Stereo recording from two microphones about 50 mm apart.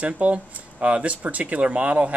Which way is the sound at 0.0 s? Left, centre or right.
Right.